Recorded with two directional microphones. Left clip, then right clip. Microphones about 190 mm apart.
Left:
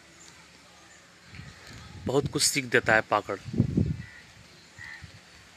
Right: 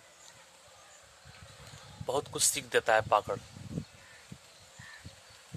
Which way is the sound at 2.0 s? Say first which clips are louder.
Left 5 dB; 5° right (ahead or behind).